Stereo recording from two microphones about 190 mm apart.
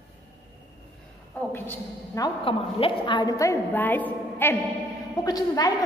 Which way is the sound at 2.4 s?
30° left (ahead or behind).